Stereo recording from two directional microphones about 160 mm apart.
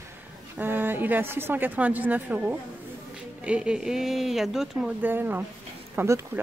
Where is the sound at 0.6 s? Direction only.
15° right (ahead or behind).